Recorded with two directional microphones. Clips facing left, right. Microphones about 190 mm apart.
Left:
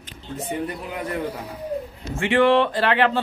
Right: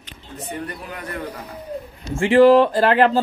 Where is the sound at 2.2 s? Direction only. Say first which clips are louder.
Right 6 dB; 35° right (ahead or behind).